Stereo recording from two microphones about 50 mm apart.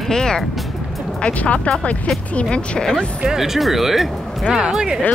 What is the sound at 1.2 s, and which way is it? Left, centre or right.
Speech, left.